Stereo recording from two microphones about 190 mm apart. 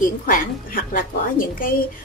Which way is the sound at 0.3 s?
45° left (ahead or behind).